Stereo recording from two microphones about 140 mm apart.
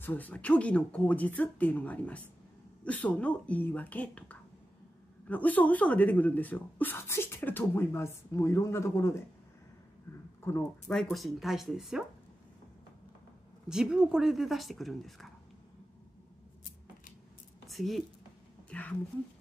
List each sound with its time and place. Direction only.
0.0 s speech: 10° left (ahead or behind)
10.9 s speech: centre (ahead or behind)
13.7 s speech: 5° right (ahead or behind)
17.6 s speech: centre (ahead or behind)
18.7 s a woman's voice: 10° left (ahead or behind)